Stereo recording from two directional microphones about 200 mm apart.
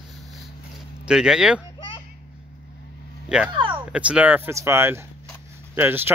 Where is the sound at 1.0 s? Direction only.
5° right (ahead or behind).